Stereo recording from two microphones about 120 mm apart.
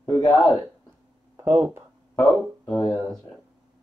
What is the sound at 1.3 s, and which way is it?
Speech, 20° right (ahead or behind).